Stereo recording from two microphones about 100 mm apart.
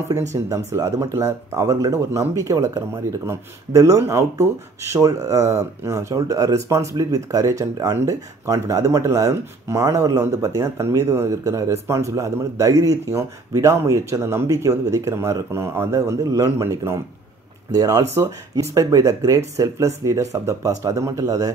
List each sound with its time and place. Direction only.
0.1 s speech: 30° right (ahead or behind)